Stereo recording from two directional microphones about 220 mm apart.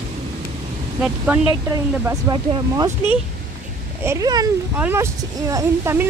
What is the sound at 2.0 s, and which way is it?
Speech, 20° right (ahead or behind).